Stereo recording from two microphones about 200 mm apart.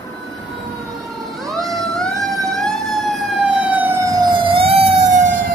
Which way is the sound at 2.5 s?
Centre (ahead or behind).